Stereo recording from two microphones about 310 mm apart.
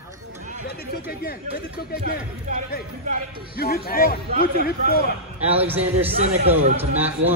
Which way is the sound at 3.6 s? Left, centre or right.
Left.